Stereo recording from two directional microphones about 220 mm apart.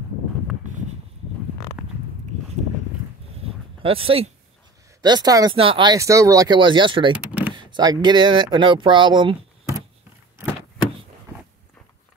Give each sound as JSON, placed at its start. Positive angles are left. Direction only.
{"t": 2.3, "sound": "a sound", "side_deg": -35}
{"t": 5.0, "sound": "speech", "side_deg": -20}
{"t": 7.2, "sound": "power windows", "side_deg": -5}
{"t": 7.5, "sound": "speech", "side_deg": -20}